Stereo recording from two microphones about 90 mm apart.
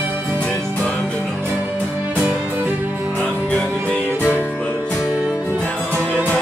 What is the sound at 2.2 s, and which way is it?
Music, 20° right (ahead or behind).